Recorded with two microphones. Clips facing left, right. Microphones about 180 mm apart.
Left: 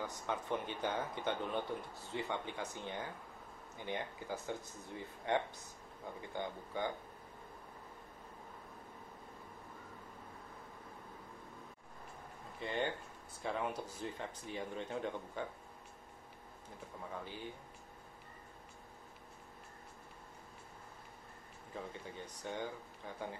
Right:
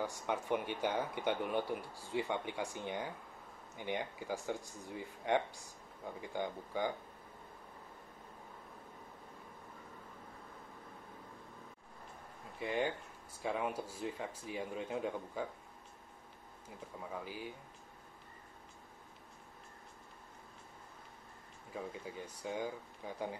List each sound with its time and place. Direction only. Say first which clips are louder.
0.0 s speech: right 3 dB; 15° right (ahead or behind)
12.5 s speech: right 2 dB; 10° right (ahead or behind)
17.1 s speech: right 2 dB; 5° right (ahead or behind)
21.7 s speech: right 2 dB; 5° right (ahead or behind)